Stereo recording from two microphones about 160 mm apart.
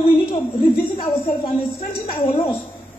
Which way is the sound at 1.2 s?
50° left (ahead or behind).